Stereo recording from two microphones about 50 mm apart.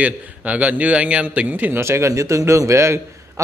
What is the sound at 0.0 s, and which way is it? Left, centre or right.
A man's voice, right.